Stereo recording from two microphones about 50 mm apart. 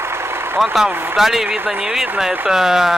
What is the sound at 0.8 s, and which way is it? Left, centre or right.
Speech, centre.